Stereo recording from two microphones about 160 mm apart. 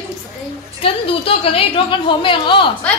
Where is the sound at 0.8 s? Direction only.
35° left (ahead or behind).